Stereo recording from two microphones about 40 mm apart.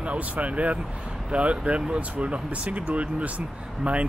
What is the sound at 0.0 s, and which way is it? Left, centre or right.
Speech, right.